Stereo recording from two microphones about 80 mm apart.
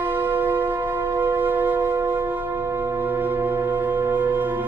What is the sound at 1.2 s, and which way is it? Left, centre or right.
Music, right.